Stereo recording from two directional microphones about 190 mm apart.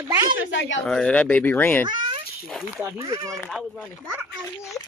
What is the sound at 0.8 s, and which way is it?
Speech, 5° left (ahead or behind).